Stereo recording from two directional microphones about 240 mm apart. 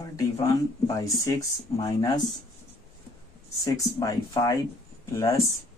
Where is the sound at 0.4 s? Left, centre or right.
Centre.